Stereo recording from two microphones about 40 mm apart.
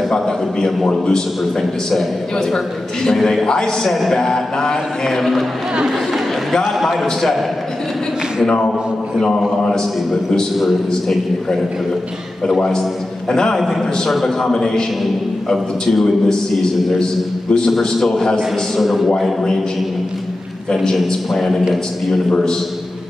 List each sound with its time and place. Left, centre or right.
0.8 s a man's voice: centre
2.3 s a sound: centre
6.5 s a man's voice: centre
9.6 s a man's voice: left
10.5 s a man's voice: centre
12.5 s a sound: centre
13.6 s a man's voice: centre
14.4 s a sound: centre
17.0 s a man's voice: centre
17.6 s a man's voice: centre
20.7 s a sound: centre
21.3 s a man's voice: centre